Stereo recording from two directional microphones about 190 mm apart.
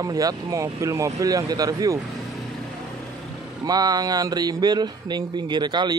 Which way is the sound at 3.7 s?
20° right (ahead or behind).